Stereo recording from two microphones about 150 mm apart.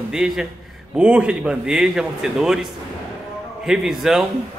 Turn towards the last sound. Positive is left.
turn(degrees=-5)  # may be behind; listen again after turning